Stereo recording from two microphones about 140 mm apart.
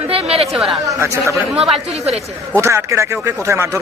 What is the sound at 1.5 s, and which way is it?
Speech, 5° right (ahead or behind).